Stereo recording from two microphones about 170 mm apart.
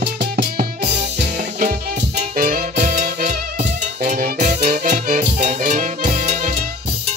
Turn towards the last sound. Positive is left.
turn(degrees=-45)  # may be behind; listen again after turning